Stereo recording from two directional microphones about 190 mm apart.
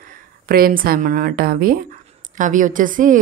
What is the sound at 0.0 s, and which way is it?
A woman's voice, 50° right (ahead or behind).